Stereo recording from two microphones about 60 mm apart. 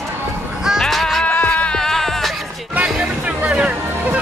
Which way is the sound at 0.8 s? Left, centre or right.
Centre.